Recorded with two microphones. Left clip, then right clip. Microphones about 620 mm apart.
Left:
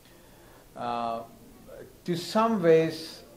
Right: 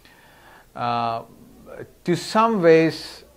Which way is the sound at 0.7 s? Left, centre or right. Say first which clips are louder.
Right 7 dB; right.